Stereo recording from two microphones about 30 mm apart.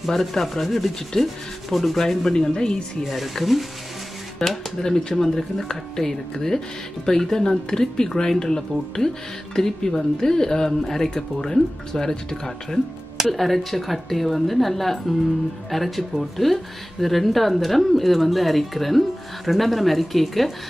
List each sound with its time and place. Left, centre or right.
0.1 s a woman's voice: centre
2.4 s speech: left
3.0 s a woman's voice: centre
4.4 s speech: centre
13.3 s a woman's voice: centre